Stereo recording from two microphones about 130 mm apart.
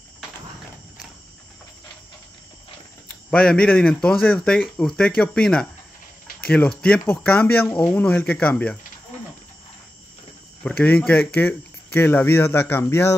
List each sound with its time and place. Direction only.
3.3 s speech: 5° left (ahead or behind)
10.6 s speech: 10° left (ahead or behind)